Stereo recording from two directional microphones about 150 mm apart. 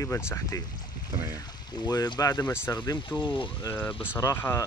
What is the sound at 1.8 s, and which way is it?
Speech, 30° left (ahead or behind).